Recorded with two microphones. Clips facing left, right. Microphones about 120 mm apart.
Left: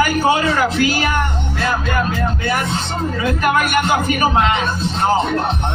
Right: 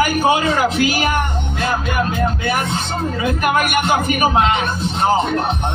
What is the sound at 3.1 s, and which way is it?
Speech, 15° right (ahead or behind).